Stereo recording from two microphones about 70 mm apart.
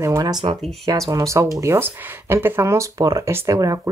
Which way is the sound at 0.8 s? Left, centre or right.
Right.